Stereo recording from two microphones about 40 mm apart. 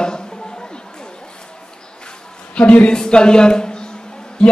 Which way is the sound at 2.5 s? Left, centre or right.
Left.